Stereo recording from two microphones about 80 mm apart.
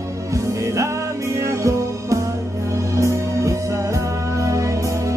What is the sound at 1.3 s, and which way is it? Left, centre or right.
Music, right.